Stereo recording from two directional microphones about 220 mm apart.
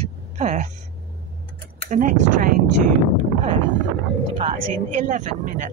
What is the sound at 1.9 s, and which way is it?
Speech, 35° right (ahead or behind).